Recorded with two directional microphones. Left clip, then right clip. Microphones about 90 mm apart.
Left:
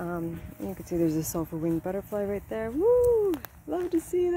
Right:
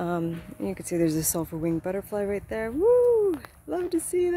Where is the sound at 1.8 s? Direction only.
25° right (ahead or behind).